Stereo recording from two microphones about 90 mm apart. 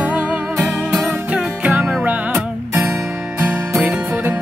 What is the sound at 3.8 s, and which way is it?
Music, 10° right (ahead or behind).